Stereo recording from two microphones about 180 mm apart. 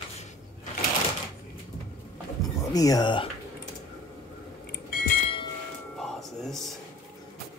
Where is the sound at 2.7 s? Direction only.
20° left (ahead or behind).